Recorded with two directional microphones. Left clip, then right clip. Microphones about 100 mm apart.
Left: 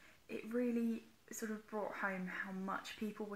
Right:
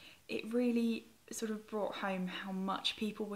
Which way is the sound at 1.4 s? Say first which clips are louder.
Right 5 dB; 15° right (ahead or behind).